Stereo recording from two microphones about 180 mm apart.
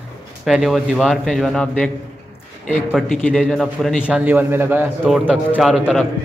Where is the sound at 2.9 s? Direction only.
Centre (ahead or behind).